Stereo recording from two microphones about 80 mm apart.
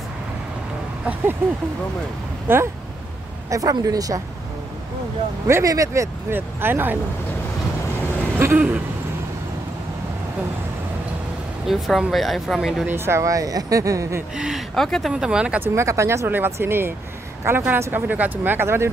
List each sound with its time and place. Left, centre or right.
1.4 s speech: right
3.4 s speech: right
5.5 s speech: right
6.3 s speech: right
8.4 s speech: right
11.6 s speech: centre
12.8 s speech: right
13.2 s speech: right
14.3 s speech: centre
14.8 s speech: centre
15.1 s speech: centre
15.6 s speech: right
16.3 s speech: right